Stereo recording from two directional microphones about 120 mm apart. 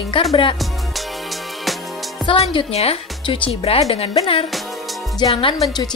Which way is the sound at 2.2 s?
50° left (ahead or behind).